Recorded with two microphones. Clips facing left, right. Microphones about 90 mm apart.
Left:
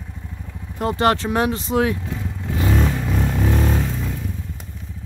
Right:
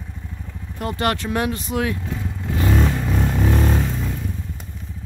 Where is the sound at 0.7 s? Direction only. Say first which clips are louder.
Left 4 dB; 25° left (ahead or behind).